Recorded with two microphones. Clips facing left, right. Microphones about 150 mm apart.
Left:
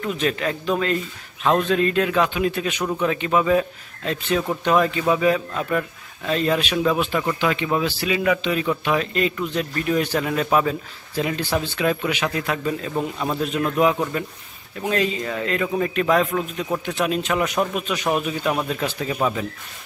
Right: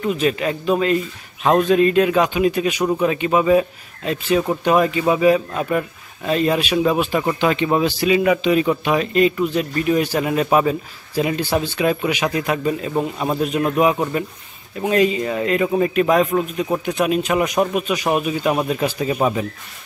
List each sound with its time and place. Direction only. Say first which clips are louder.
0.0 s a man's voice: right 4 dB; 10° right (ahead or behind)
7.2 s a man's voice: right 4 dB; 25° right (ahead or behind)